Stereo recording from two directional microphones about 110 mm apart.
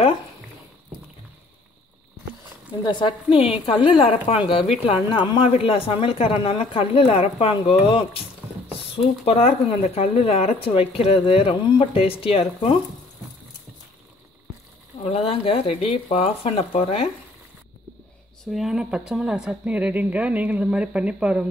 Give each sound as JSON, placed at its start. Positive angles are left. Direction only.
{"t": 2.8, "sound": "a woman's voice", "side_deg": 45}
{"t": 5.5, "sound": "speech", "side_deg": 60}
{"t": 9.2, "sound": "speech", "side_deg": 65}
{"t": 15.0, "sound": "speech", "side_deg": 60}
{"t": 18.4, "sound": "a woman's voice", "side_deg": 0}